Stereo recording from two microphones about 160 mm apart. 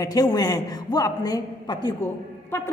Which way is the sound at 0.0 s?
25° left (ahead or behind).